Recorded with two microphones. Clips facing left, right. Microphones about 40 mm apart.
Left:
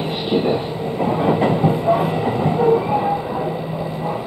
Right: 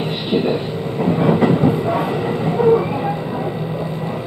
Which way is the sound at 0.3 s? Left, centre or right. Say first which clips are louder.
Even; right.